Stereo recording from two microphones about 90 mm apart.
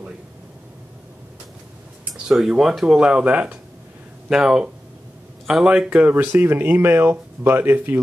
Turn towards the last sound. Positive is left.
turn(degrees=-25)  # may be behind; listen again after turning